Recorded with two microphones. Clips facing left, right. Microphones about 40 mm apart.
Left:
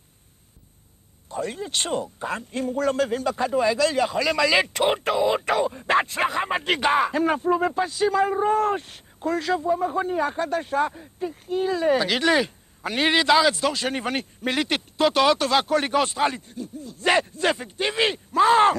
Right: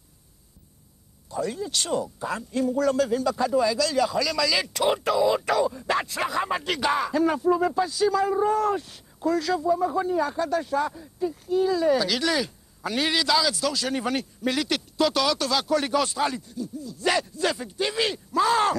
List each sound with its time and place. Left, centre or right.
1.3 s speech: left